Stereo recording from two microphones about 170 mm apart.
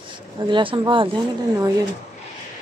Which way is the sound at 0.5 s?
30° right (ahead or behind).